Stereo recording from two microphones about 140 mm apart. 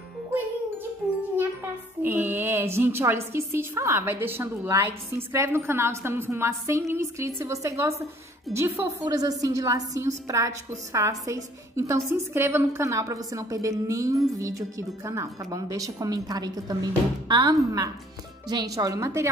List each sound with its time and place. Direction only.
2.0 s a woman's voice: 15° right (ahead or behind)